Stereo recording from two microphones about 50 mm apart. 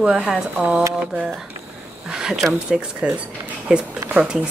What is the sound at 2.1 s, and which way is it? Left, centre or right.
A woman's voice, centre.